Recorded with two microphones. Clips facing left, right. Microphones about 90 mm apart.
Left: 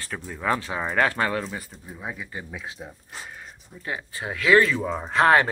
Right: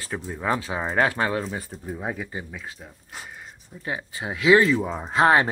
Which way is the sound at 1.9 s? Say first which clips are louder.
Right 5 dB; 45° right (ahead or behind).